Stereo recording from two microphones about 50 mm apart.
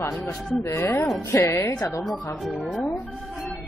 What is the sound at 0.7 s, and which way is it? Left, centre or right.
Speech, left.